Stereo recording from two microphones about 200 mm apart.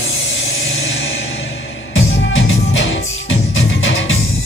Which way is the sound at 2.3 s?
70° left (ahead or behind).